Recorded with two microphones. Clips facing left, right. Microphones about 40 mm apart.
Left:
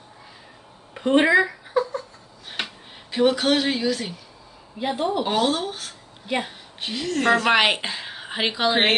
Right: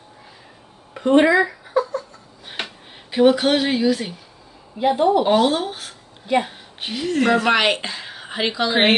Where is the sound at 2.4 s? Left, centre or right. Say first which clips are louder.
Right 1 dB; centre.